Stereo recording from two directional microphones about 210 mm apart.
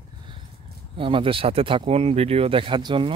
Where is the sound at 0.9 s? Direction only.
25° right (ahead or behind).